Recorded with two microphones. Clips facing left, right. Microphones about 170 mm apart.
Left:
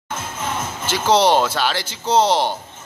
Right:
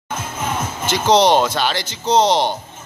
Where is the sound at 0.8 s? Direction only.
5° left (ahead or behind).